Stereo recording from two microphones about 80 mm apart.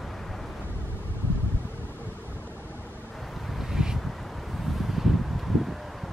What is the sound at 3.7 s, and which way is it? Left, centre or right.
Wind, centre.